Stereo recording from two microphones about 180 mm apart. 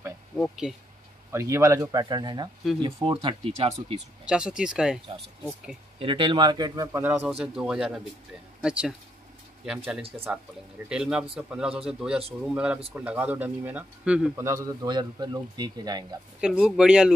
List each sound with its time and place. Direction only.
0.4 s speech: centre (ahead or behind)
1.3 s speech: 15° right (ahead or behind); by 4.0 s 35° right (ahead or behind)
4.3 s speech: 5° right (ahead or behind)
5.9 s speech: 30° right (ahead or behind); by 8.9 s 5° right (ahead or behind)
10.1 s speech: 10° right (ahead or behind)
16.3 s speech: 5° right (ahead or behind)